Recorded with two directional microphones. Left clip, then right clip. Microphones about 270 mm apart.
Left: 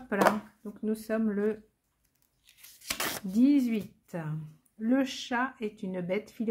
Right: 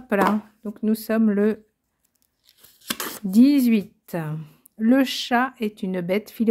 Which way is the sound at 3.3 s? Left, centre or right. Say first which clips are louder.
Right 9 dB; right.